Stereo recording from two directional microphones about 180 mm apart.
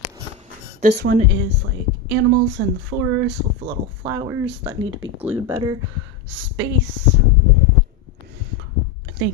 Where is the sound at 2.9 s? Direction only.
20° right (ahead or behind).